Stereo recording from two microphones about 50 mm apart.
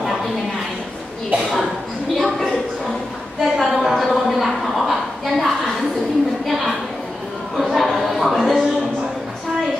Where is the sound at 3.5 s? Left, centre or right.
Centre.